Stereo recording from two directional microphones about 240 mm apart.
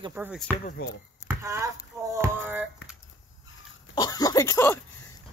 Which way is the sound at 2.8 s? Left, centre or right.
Left.